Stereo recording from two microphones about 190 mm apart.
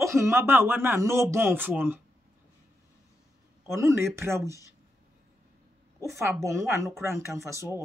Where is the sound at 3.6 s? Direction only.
15° right (ahead or behind).